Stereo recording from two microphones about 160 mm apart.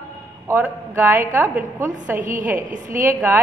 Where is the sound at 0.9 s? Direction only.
15° right (ahead or behind).